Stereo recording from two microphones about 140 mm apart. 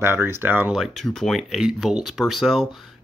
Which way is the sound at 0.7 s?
Centre (ahead or behind).